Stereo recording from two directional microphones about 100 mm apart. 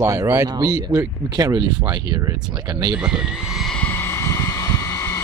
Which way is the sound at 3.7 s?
20° left (ahead or behind).